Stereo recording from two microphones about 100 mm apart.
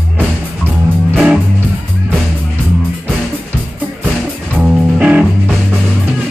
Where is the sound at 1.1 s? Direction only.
10° right (ahead or behind).